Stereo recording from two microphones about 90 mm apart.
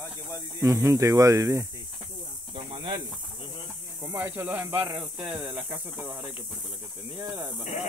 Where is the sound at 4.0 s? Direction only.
30° right (ahead or behind).